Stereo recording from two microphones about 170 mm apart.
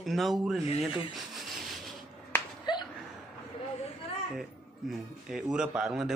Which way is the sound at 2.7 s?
25° left (ahead or behind).